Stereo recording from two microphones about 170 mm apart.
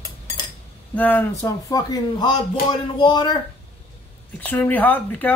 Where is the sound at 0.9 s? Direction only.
10° left (ahead or behind); by 3.3 s 25° left (ahead or behind).